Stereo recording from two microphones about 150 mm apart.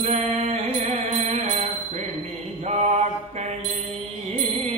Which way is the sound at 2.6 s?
45° right (ahead or behind).